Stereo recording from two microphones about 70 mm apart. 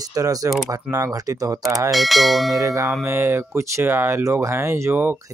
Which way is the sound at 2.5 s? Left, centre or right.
Right.